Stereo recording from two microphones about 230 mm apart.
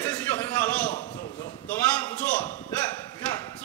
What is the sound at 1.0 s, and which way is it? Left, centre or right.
Speech, left.